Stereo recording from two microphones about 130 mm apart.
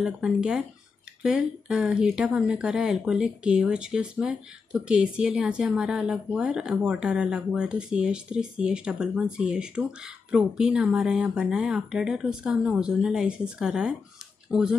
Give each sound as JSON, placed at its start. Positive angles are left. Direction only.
{"t": 0.0, "sound": "speech", "side_deg": -5}